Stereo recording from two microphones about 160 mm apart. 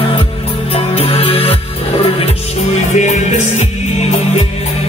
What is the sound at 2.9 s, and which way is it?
Music, 50° left (ahead or behind).